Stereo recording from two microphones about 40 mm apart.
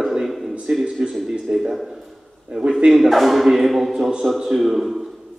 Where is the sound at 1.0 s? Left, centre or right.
Right.